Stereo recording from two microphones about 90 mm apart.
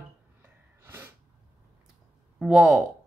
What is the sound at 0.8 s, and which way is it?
Sneeze, 25° right (ahead or behind).